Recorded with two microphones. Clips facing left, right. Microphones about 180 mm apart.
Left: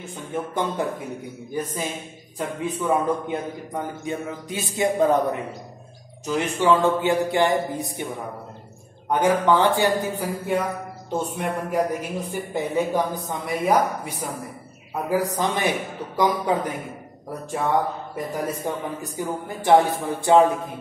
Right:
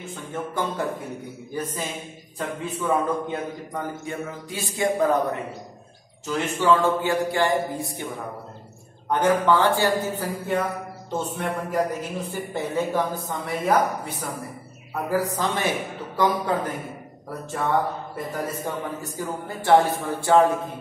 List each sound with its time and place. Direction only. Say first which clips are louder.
0.1 s a man's voice: left 3 dB; 15° left (ahead or behind)
2.3 s a man's voice: left 2 dB; 15° left (ahead or behind)
9.1 s a man's voice: left 1 dB; 15° left (ahead or behind)